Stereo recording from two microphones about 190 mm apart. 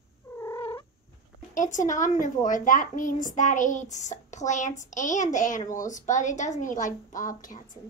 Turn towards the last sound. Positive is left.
turn(degrees=45)  # may be behind; listen again after turning